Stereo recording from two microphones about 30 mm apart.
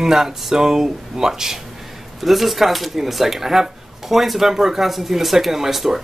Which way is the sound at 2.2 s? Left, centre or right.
Centre.